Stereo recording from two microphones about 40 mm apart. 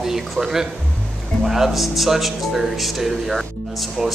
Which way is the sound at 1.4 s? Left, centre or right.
Centre.